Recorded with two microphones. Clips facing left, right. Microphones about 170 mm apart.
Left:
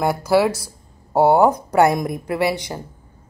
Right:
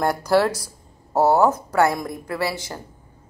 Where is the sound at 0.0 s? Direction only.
5° left (ahead or behind).